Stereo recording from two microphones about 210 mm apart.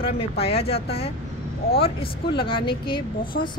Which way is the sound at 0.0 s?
30° left (ahead or behind).